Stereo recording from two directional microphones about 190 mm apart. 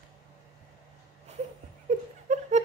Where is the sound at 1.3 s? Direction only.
35° right (ahead or behind).